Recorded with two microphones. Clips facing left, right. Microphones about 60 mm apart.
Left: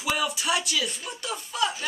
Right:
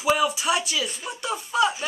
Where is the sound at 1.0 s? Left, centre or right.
Centre.